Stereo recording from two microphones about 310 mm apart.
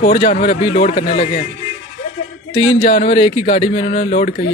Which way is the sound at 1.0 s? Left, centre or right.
Centre.